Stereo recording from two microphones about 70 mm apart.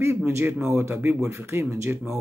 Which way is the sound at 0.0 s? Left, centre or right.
Right.